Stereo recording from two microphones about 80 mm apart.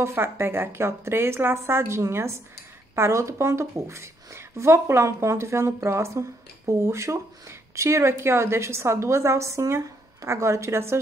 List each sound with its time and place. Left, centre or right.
0.0 s speech: right